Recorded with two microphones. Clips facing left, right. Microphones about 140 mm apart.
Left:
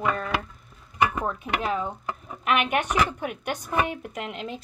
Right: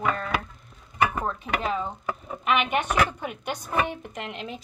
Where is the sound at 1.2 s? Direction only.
10° left (ahead or behind).